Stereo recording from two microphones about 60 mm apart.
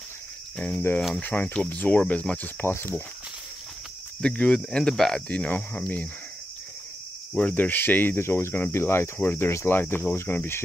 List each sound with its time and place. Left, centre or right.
1.2 s speech: left
2.6 s speech: left
4.2 s speech: centre
5.1 s speech: centre
5.5 s speech: left
7.3 s speech: left
8.7 s cricket: left
9.7 s speech: left